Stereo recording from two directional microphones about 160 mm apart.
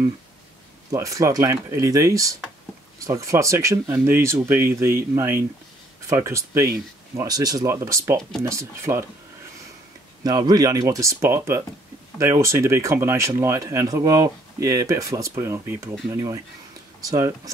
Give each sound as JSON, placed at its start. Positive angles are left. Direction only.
{"t": 0.9, "sound": "speech", "side_deg": -20}
{"t": 10.2, "sound": "speech", "side_deg": -25}